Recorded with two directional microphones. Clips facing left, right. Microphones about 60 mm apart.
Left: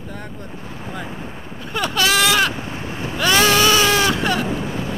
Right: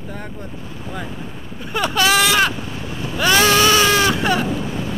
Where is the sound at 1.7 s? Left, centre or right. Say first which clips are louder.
Right 2 dB; centre.